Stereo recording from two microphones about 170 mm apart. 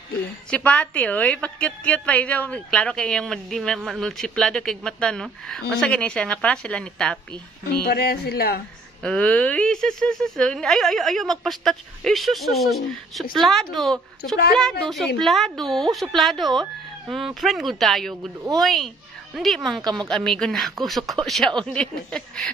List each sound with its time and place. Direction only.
0.5 s speech: 10° left (ahead or behind)
7.6 s music: 65° left (ahead or behind)
9.0 s speech: 5° left (ahead or behind)
19.8 s a woman's voice: 25° right (ahead or behind)
20.1 s speech: 5° left (ahead or behind)